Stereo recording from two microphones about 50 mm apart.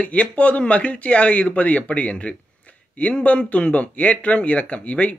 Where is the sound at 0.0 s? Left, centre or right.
Left.